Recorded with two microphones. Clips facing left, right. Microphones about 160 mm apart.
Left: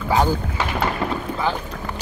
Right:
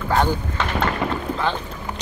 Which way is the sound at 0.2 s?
10° left (ahead or behind).